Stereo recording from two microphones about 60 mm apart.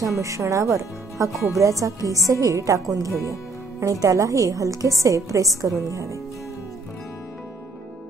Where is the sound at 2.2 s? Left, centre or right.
Right.